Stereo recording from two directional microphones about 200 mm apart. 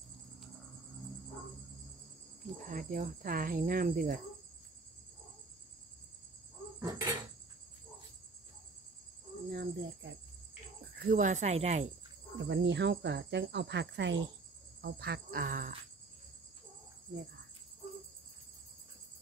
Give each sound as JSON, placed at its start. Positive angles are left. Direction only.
{"t": 2.6, "sound": "speech", "side_deg": -45}
{"t": 6.8, "sound": "a sound", "side_deg": -20}
{"t": 9.5, "sound": "cricket", "side_deg": -55}
{"t": 11.0, "sound": "cricket", "side_deg": -45}
{"t": 12.4, "sound": "speech", "side_deg": -60}